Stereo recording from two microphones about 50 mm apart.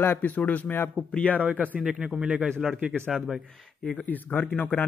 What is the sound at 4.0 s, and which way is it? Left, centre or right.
Speech, left.